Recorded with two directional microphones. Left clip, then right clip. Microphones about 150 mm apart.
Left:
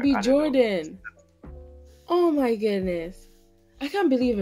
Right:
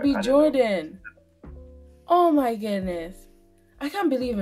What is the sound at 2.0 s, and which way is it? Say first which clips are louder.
A child's voice: right 3 dB; 70° left (ahead or behind).